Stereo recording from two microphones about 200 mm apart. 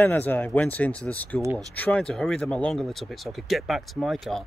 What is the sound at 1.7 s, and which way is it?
Speech, 5° left (ahead or behind).